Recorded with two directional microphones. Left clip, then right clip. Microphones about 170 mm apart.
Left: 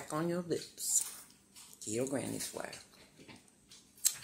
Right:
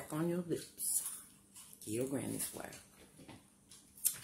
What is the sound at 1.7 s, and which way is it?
Speech, 20° right (ahead or behind).